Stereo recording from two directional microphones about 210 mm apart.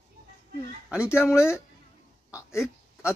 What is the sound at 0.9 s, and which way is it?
Speech, 5° right (ahead or behind).